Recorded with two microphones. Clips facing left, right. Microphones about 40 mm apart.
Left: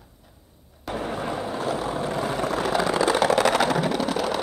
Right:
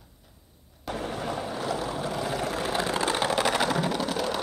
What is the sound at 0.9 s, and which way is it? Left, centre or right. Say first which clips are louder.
Vehicle: left 4 dB; left.